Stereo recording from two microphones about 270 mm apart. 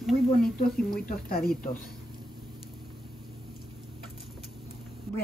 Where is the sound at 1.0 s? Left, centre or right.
Left.